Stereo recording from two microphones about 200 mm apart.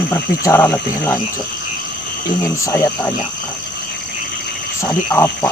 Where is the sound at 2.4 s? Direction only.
15° left (ahead or behind).